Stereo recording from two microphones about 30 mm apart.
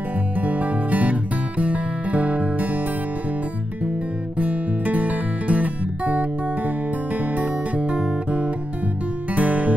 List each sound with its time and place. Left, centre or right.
0.4 s music: right
4.8 s music: right
7.3 s music: right
9.3 s music: right